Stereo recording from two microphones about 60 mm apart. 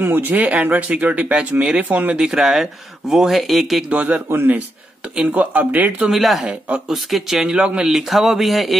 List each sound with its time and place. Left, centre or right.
0.0 s speech: right
2.1 s speech: centre
3.9 s speech: right
4.3 s a man's voice: right
6.0 s speech: centre